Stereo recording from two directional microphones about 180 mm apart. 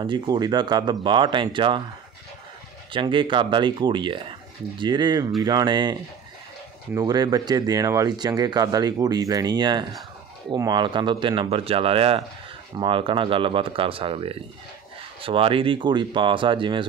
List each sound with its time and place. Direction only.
0.0 s speech: 25° right (ahead or behind)
2.9 s speech: 25° right (ahead or behind)